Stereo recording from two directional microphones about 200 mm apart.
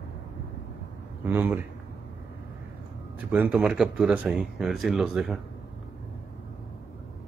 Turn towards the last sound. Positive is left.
turn(degrees=0)  # may be behind; listen again after turning